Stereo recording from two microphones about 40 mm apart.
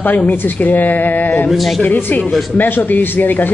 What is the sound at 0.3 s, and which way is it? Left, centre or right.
A woman's voice, left.